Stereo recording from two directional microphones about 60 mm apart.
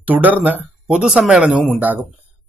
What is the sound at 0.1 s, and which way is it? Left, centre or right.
Speech, right.